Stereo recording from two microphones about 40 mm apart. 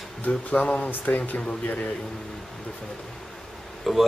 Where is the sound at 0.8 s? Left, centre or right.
Left.